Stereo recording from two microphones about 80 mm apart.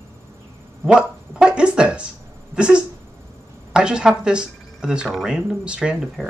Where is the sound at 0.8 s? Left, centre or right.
Centre.